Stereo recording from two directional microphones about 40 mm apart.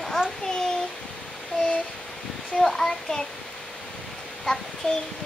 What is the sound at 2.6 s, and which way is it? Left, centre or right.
Speech, centre.